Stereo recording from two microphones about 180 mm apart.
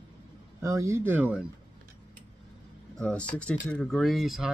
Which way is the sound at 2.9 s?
5° left (ahead or behind).